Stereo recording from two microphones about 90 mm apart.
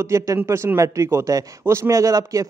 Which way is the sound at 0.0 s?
35° right (ahead or behind).